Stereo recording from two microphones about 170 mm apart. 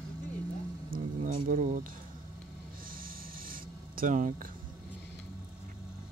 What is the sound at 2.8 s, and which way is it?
Filing, 55° right (ahead or behind).